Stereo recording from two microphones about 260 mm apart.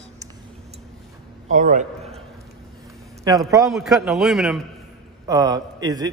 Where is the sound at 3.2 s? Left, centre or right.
Centre.